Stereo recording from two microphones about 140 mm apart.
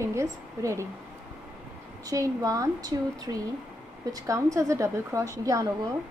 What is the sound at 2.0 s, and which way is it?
A woman's voice, 25° right (ahead or behind).